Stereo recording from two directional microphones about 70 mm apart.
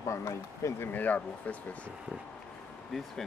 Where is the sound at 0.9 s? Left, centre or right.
Left.